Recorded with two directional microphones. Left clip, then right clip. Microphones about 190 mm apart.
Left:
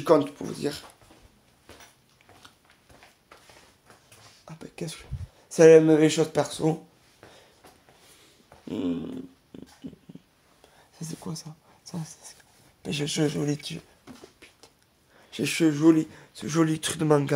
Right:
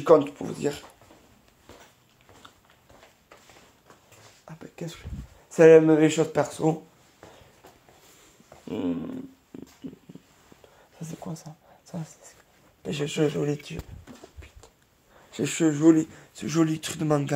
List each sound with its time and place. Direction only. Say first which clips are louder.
0.0 s speech: right 3 dB; 5° left (ahead or behind)
4.5 s a sound: left 1 dB; 25° left (ahead or behind)
5.5 s speech: even; 10° left (ahead or behind)
8.6 s speech: even; 20° left (ahead or behind)
11.0 s a sound: left 1 dB; 20° left (ahead or behind)
12.8 s speech: right 1 dB; 20° left (ahead or behind)
15.3 s speech: left 1 dB; 15° left (ahead or behind)
16.5 s speech: left 1 dB; 20° left (ahead or behind)